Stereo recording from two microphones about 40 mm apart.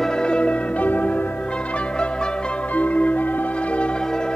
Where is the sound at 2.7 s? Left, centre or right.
Left.